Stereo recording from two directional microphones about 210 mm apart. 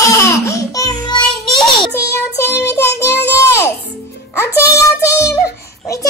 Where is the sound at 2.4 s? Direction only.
10° left (ahead or behind).